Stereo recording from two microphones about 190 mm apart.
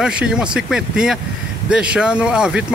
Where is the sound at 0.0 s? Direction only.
5° right (ahead or behind).